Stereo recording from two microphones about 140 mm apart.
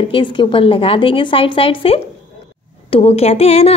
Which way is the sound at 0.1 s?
35° left (ahead or behind).